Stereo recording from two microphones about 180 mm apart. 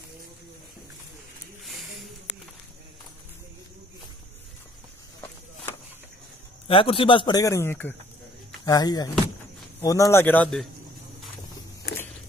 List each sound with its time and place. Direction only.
6.7 s a man's voice: 30° left (ahead or behind); by 10.7 s 5° left (ahead or behind)